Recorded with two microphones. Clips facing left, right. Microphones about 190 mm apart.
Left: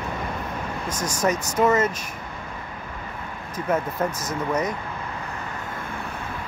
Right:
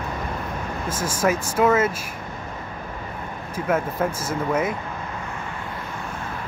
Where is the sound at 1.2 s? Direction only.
5° right (ahead or behind).